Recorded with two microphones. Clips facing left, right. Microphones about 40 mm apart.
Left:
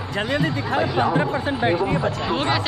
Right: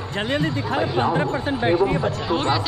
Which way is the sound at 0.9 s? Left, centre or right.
Left.